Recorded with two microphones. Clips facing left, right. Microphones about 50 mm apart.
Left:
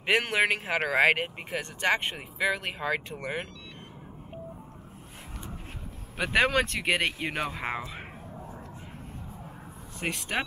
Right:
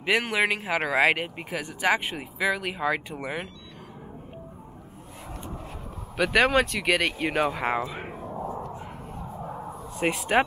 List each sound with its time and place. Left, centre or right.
0.0 s a man's voice: centre
6.4 s speech: right
6.9 s speech: centre
7.2 s speech: centre
8.3 s a sound: right
9.9 s speech: centre